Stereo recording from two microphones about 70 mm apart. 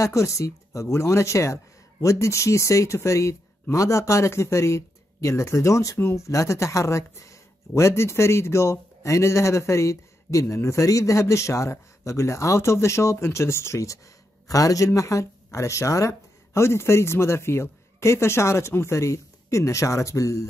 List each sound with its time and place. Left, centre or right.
0.0 s speech: left